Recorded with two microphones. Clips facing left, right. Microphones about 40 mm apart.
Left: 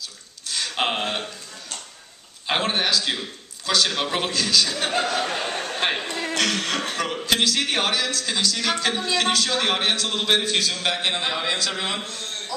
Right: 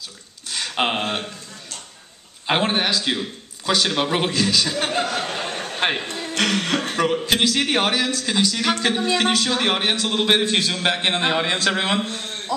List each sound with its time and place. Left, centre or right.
0.5 s speech: centre
2.4 s a man's voice: centre
4.9 s a man's voice: centre; by 11.1 s right
11.1 s speech: right